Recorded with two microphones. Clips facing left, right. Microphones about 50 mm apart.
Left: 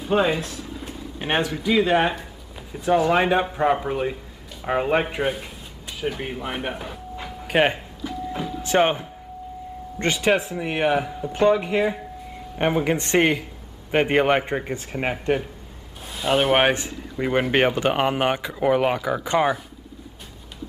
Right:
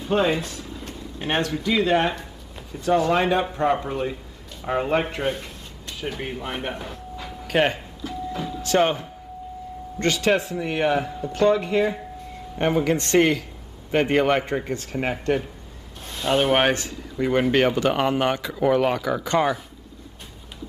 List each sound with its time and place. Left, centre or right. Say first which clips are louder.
0.0 s a sound: left 1 dB; centre
1.2 s a man's voice: left 1 dB; centre
7.4 s doorbell: left 1 dB; centre
8.6 s a man's voice: left 1 dB; left
16.1 s speech: left 1 dB; centre